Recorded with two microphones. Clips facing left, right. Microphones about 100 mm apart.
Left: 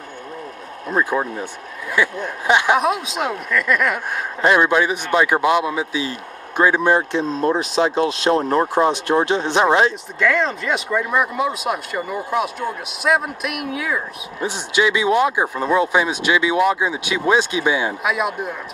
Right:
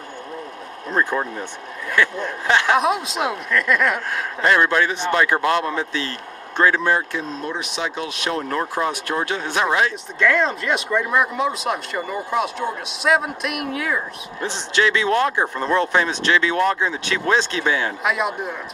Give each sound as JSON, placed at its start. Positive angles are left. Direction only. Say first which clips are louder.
{"t": 0.9, "sound": "speech", "louder": "left 2 dB", "side_deg": 10}
{"t": 2.8, "sound": "speech", "louder": "even", "side_deg": 0}
{"t": 4.4, "sound": "speech", "louder": "left 2 dB", "side_deg": 15}
{"t": 7.3, "sound": "speech", "louder": "left 9 dB", "side_deg": 35}
{"t": 10.1, "sound": "speech", "louder": "even", "side_deg": 0}
{"t": 14.4, "sound": "speech", "louder": "left 1 dB", "side_deg": 10}